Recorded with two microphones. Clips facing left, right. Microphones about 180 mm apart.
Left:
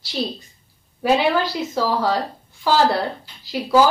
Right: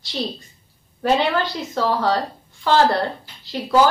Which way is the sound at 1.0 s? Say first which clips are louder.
Left 1 dB; 5° left (ahead or behind).